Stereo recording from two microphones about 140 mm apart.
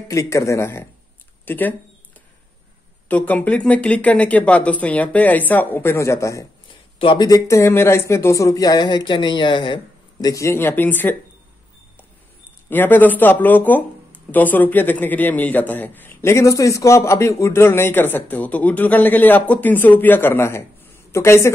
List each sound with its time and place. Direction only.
0.1 s speech: 20° left (ahead or behind)
3.1 s a man's voice: 10° left (ahead or behind)
7.0 s speech: 35° left (ahead or behind)
10.2 s a man's voice: 20° left (ahead or behind)
12.6 s a man's voice: 15° left (ahead or behind)